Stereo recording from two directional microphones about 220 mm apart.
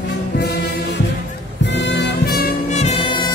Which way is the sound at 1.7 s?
50° left (ahead or behind).